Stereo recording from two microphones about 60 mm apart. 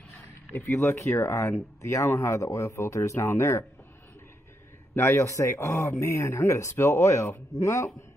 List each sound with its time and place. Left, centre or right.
0.5 s speech: left
5.0 s speech: left
5.9 s speech: left